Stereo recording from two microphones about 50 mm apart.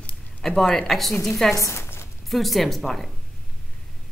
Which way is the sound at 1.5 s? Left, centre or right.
Left.